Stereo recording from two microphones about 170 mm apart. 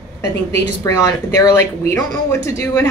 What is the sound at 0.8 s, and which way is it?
Speech, 20° left (ahead or behind).